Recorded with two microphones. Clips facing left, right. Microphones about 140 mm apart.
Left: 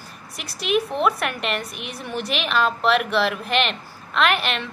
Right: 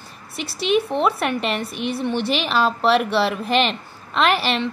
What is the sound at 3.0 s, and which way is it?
Speech, 35° right (ahead or behind).